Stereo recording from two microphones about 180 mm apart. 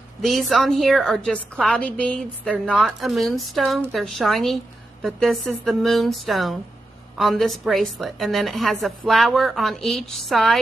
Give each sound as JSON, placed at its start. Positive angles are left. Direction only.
{"t": 0.2, "sound": "a woman's voice", "side_deg": 0}